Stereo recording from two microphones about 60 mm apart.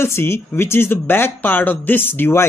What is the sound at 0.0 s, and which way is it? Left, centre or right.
Speech, left.